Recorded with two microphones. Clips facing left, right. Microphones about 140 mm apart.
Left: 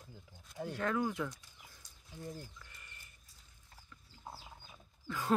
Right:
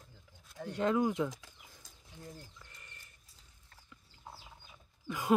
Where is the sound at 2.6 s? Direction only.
25° right (ahead or behind).